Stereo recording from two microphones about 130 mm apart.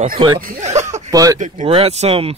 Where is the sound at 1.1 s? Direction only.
30° right (ahead or behind).